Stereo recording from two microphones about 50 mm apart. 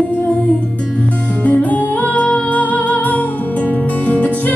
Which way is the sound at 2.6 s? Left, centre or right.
Left.